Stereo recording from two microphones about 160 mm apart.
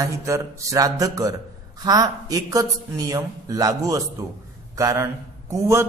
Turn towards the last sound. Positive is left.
turn(degrees=-20)  # may be behind; listen again after turning